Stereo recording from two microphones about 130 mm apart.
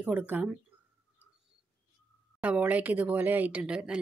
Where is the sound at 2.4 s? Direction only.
10° right (ahead or behind).